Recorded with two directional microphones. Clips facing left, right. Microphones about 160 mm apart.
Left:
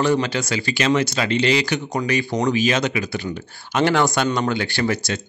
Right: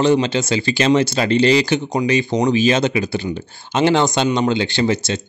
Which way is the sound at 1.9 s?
20° right (ahead or behind).